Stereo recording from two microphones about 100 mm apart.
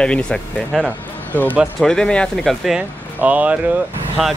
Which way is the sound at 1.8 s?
5° left (ahead or behind).